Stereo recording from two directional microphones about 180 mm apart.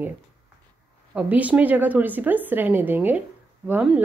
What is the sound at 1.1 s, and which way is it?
A woman's voice, 10° right (ahead or behind).